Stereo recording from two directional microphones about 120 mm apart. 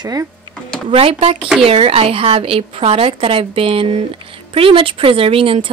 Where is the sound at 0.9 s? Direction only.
55° right (ahead or behind).